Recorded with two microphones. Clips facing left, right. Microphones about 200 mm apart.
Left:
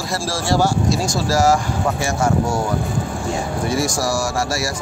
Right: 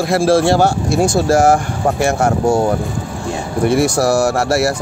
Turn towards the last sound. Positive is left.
turn(degrees=-60)  # may be behind; listen again after turning